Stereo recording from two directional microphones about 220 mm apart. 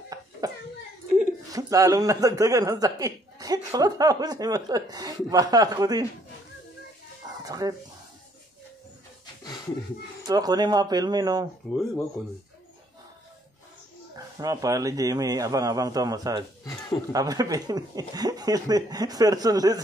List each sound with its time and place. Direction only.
1.1 s speech: 10° right (ahead or behind)
7.4 s speech: 15° right (ahead or behind)
10.2 s speech: 15° right (ahead or behind)
11.7 s speech: centre (ahead or behind)
14.1 s speech: 15° right (ahead or behind)